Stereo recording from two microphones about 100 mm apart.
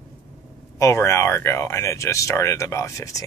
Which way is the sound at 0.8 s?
30° left (ahead or behind).